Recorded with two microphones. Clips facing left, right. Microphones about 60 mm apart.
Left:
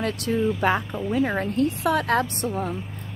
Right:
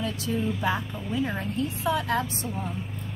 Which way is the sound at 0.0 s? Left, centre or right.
Left.